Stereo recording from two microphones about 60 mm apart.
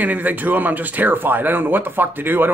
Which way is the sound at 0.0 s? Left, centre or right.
Right.